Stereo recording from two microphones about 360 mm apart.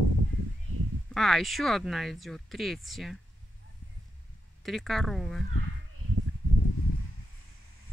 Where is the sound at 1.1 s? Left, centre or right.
Centre.